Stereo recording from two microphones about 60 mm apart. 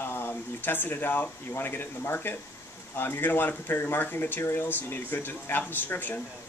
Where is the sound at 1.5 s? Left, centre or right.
Left.